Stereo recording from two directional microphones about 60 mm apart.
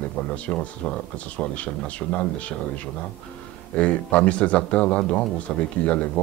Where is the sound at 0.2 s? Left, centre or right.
Left.